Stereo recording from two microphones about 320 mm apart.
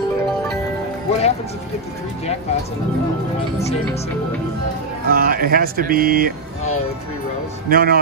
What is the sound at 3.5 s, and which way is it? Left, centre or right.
Speech, centre.